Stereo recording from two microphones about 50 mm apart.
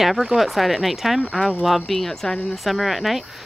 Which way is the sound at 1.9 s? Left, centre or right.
Centre.